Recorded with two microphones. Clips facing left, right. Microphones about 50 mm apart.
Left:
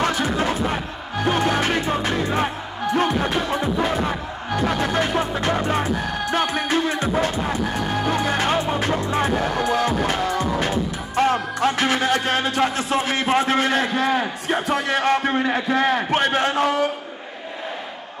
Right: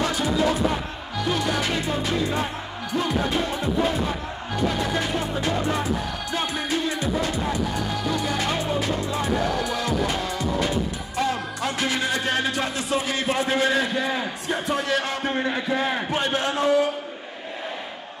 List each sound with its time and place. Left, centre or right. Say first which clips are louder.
0.0 s music: left 1 dB; left
5.4 s speech: left 3 dB; left
15.3 s a man's voice: left 4 dB; left